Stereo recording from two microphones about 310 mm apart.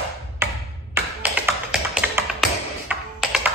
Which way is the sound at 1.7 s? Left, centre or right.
Centre.